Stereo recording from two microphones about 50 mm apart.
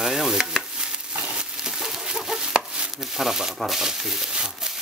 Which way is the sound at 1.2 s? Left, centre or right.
Centre.